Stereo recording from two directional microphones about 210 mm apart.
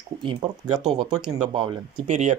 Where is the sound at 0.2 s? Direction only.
25° right (ahead or behind).